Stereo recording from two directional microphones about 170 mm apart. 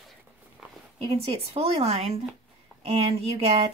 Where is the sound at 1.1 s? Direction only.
35° right (ahead or behind).